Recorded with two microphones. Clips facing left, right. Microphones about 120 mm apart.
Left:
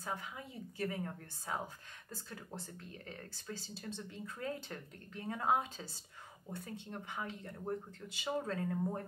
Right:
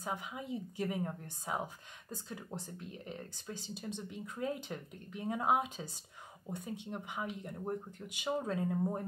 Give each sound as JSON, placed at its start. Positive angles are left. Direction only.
{"t": 0.0, "sound": "a woman's voice", "side_deg": -15}